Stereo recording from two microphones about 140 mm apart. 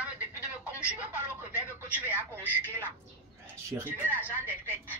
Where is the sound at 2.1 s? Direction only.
15° left (ahead or behind).